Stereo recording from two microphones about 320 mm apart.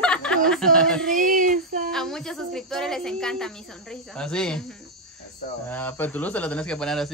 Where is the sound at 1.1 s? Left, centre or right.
Right.